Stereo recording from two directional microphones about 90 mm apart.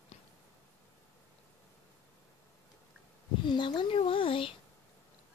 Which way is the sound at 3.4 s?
60° left (ahead or behind).